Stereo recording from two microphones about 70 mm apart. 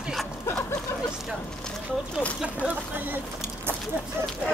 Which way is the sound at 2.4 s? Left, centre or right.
Right.